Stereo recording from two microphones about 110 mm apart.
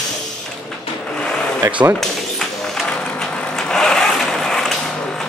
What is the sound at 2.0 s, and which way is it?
Vehicle, 5° left (ahead or behind).